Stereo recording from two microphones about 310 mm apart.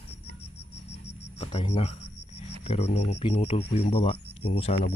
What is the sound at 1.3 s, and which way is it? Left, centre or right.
Speech, centre.